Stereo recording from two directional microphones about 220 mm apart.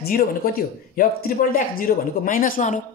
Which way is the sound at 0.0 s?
40° left (ahead or behind).